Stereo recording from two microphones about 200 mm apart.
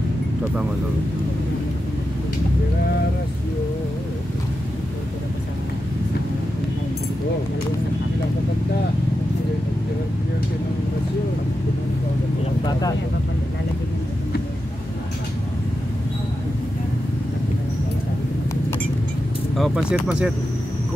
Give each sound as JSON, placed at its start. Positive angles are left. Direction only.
{"t": 19.5, "sound": "speech", "side_deg": 0}